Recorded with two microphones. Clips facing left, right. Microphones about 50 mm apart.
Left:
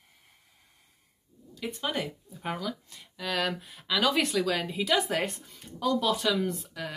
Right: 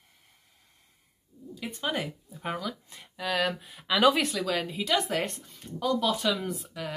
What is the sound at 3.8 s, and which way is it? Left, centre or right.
Speech, centre.